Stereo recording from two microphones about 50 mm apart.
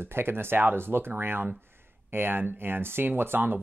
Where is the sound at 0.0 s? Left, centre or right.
Right.